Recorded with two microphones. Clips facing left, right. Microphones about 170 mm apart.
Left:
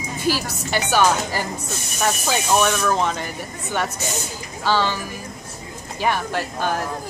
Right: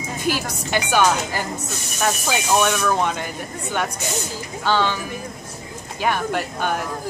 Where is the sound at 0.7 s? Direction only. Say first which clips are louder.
Even; 5° left (ahead or behind); by 3.2 s 10° right (ahead or behind).